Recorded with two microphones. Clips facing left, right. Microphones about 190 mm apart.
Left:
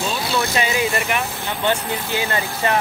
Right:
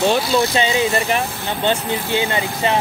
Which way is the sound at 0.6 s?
25° right (ahead or behind).